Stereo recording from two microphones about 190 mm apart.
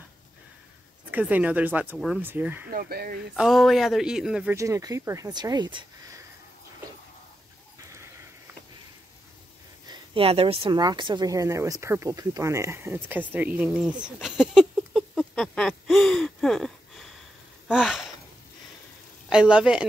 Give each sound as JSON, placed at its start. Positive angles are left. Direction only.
{"t": 1.1, "sound": "speech", "side_deg": -10}
{"t": 2.7, "sound": "speech", "side_deg": -55}
{"t": 3.3, "sound": "speech", "side_deg": 0}
{"t": 4.6, "sound": "speech", "side_deg": -15}
{"t": 9.8, "sound": "speech", "side_deg": -30}
{"t": 14.0, "sound": "a sound", "side_deg": -5}
{"t": 17.6, "sound": "gasp", "side_deg": -5}
{"t": 19.2, "sound": "speech", "side_deg": -5}